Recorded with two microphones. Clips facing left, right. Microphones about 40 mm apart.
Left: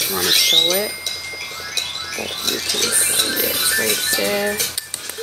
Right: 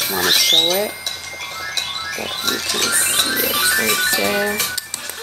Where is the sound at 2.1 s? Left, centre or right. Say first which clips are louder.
Right 1 dB; right.